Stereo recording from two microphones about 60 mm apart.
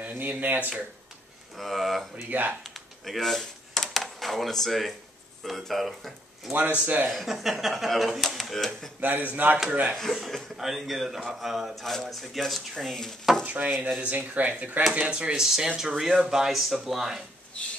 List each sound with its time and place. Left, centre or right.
0.0 s speech: right
1.6 s speech: centre
2.6 s a sound: centre
5.4 s speech: centre
6.5 s speech: right
7.1 s speech: centre
9.0 s speech: right
9.9 s speech: centre
13.4 s speech: right
14.9 s speech: centre